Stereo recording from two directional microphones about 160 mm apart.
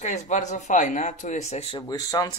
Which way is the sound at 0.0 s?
50° left (ahead or behind).